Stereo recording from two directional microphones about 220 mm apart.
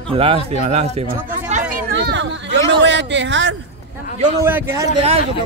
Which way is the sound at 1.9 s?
50° right (ahead or behind).